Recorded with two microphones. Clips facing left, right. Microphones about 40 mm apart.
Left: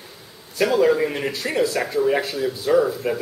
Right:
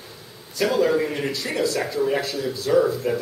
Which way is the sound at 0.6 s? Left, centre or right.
Centre.